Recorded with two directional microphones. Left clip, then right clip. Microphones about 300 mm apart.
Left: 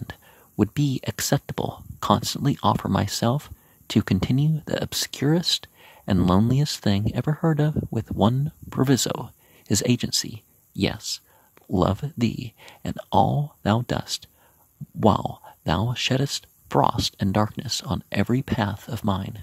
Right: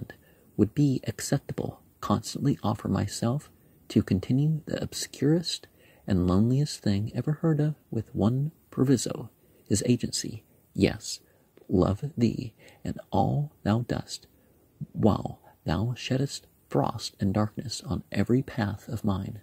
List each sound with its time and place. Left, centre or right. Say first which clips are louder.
0.0 s speech: left 6 dB; left